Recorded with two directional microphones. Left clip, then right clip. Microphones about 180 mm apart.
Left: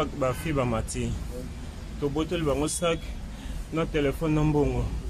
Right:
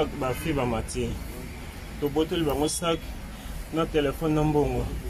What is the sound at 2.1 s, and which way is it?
A man's voice, 15° left (ahead or behind).